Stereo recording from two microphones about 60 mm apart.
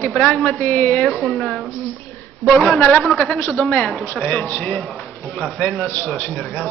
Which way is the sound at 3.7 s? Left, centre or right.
Centre.